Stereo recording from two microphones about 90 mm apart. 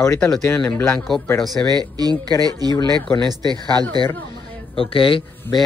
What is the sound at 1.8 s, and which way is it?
Speech, 45° right (ahead or behind).